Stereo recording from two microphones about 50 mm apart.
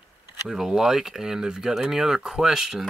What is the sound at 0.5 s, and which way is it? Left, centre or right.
Speech, centre.